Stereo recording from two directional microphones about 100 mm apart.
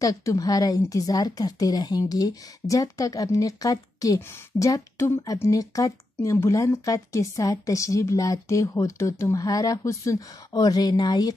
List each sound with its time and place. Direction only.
0.0 s speech: 35° left (ahead or behind)